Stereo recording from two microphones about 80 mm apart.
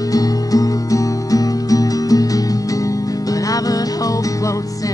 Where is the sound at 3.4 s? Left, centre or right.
Left.